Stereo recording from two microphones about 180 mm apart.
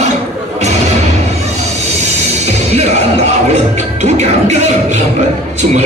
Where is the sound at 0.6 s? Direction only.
40° right (ahead or behind).